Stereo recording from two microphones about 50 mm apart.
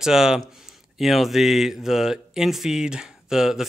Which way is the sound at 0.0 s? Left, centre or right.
Centre.